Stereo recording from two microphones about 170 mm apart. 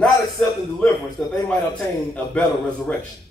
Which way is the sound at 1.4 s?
5° left (ahead or behind).